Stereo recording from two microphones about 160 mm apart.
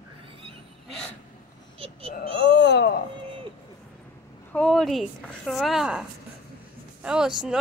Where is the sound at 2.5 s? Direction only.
90° left.